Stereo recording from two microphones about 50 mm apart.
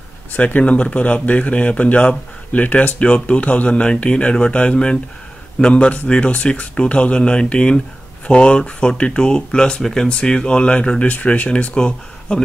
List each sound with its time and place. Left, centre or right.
0.5 s speech: left